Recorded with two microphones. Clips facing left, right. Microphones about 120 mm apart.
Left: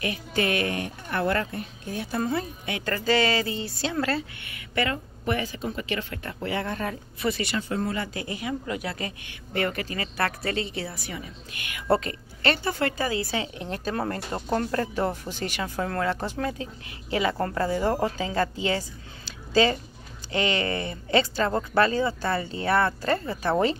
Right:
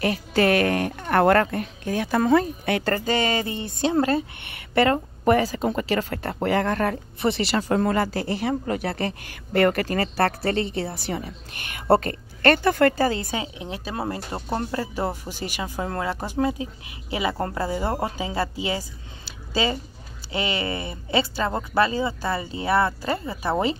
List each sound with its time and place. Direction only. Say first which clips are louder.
0.7 s speech: right 7 dB; 65° right (ahead or behind)
2.8 s speech: left 3 dB; 45° right (ahead or behind)
3.2 s a sound: even; 20° right (ahead or behind)
4.1 s speech: right 5 dB; 30° right (ahead or behind)
4.8 s a woman's voice: right 9 dB; 45° right (ahead or behind)
6.6 s speech: right 7 dB; 65° right (ahead or behind)
7.2 s a sound: right 3 dB; 25° right (ahead or behind)
7.5 s speech: right 6 dB; 55° right (ahead or behind)
7.9 s a woman's voice: right 7 dB; 40° right (ahead or behind)
8.6 s speech: right 5 dB; 50° right (ahead or behind)
10.1 s a woman's voice: right 3 dB; 30° right (ahead or behind)
11.7 s speech: right 4 dB; 45° right (ahead or behind)
12.9 s a woman's voice: right 5 dB; 35° right (ahead or behind)
13.7 s speech: left 1 dB; 10° right (ahead or behind)